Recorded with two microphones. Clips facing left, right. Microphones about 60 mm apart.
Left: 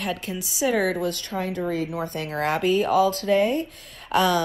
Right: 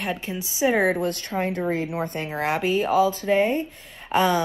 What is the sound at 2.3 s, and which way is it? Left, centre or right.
Speech, centre.